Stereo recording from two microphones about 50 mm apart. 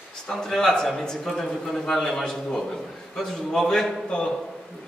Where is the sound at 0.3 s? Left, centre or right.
Centre.